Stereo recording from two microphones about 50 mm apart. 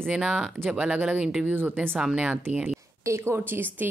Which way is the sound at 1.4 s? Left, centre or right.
Right.